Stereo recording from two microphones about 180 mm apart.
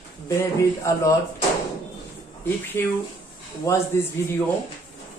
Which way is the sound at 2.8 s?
15° left (ahead or behind).